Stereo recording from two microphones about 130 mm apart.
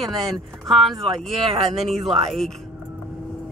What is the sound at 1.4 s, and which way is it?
Speech, 45° right (ahead or behind).